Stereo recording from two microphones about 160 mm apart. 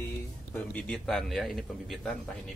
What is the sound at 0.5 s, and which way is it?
A man's voice, 5° left (ahead or behind).